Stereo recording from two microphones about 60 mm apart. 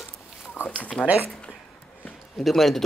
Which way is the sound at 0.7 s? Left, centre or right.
Left.